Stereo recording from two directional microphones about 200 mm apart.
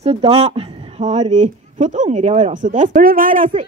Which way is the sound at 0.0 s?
30° right (ahead or behind).